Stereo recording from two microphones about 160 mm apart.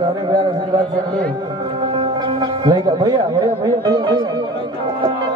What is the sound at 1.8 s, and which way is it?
Speech, 30° right (ahead or behind).